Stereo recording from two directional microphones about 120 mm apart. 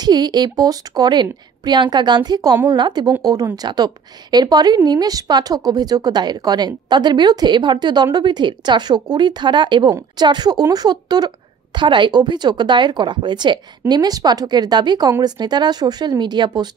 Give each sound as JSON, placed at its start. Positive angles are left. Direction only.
{"t": 0.0, "sound": "a woman's voice", "side_deg": -35}